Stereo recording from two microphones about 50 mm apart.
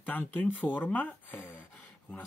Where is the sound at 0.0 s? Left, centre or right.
Left.